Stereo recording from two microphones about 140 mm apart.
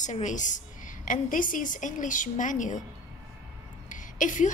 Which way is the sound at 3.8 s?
65° left (ahead or behind).